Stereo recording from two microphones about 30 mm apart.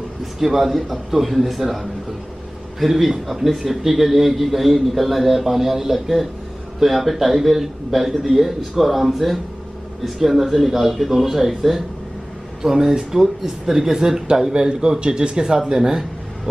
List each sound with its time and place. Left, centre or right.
0.2 s a man's voice: centre; by 16.0 s right